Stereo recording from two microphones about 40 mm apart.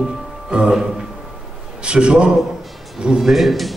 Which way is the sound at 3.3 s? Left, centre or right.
Centre.